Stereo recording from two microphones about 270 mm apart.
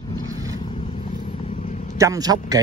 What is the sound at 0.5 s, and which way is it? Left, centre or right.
Vehicle, centre.